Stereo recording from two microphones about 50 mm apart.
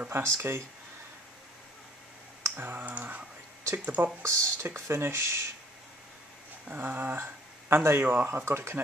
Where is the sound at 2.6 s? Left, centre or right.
Right.